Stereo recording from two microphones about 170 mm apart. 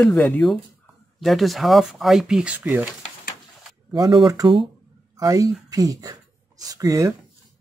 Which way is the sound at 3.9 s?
25° right (ahead or behind).